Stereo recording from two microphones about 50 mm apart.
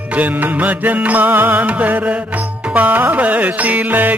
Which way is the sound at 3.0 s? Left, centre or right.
Right.